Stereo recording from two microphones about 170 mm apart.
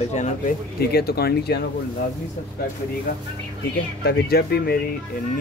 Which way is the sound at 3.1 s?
50° left (ahead or behind).